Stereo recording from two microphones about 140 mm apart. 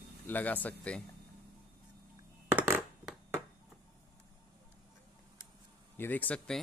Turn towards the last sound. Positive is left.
turn(degrees=10)  # may be behind; listen again after turning